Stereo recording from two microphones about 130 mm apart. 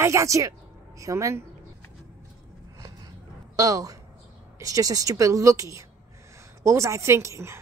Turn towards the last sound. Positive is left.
turn(degrees=-20)  # may be behind; listen again after turning